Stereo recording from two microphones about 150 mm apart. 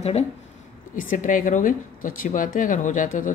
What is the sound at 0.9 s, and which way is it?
A woman's voice, 60° left (ahead or behind).